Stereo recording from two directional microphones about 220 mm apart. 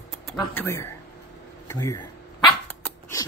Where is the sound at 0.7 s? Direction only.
15° left (ahead or behind).